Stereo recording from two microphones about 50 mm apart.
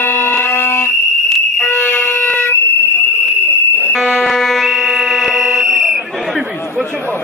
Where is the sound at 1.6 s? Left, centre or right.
Left.